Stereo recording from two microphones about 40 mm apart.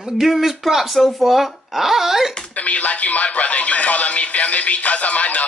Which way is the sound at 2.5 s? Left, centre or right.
Left.